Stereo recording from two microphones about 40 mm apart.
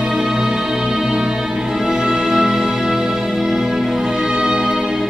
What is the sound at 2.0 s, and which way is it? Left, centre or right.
Music, centre.